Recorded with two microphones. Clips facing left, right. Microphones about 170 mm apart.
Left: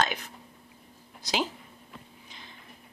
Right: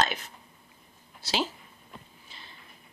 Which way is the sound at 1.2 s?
15° left (ahead or behind).